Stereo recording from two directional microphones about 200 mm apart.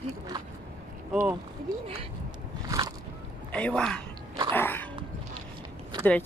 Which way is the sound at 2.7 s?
15° right (ahead or behind).